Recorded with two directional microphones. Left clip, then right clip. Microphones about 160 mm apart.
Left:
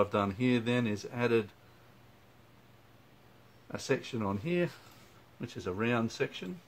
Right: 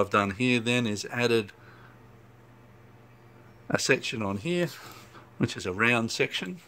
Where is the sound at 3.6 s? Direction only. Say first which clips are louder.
Right 9 dB; 50° right (ahead or behind).